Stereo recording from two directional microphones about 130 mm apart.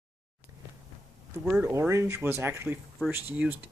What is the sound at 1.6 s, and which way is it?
Speech, 20° right (ahead or behind).